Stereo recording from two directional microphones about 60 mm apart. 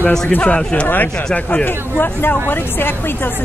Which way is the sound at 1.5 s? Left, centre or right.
Left.